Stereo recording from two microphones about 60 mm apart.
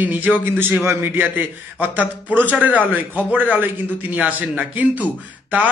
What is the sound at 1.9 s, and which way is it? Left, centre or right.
A man's voice, right.